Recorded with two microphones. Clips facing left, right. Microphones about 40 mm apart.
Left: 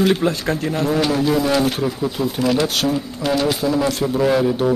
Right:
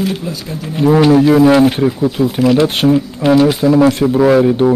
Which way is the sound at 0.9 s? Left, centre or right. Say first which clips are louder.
Right 11 dB; right.